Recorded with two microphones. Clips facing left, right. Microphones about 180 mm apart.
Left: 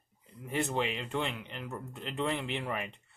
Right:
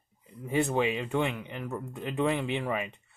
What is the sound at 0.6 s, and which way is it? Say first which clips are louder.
Speech: right 5 dB; 15° right (ahead or behind).